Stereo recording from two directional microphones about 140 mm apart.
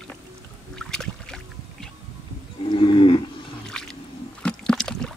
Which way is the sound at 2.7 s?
35° left (ahead or behind).